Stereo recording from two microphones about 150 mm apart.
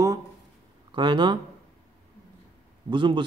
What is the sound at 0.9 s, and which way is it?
Speech, 30° right (ahead or behind).